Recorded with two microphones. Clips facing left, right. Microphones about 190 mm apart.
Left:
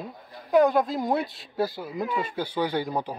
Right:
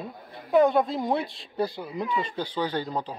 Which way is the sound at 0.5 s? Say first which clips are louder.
Even; centre (ahead or behind).